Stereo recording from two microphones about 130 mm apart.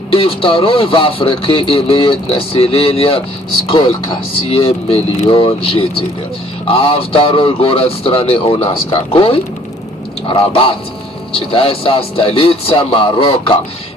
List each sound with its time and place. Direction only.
0.1 s speech: 45° left (ahead or behind)